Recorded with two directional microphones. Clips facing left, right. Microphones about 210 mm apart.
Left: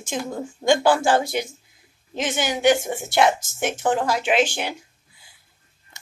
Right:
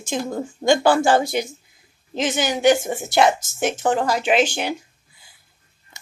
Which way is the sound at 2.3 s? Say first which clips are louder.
Right 2 dB; 40° right (ahead or behind).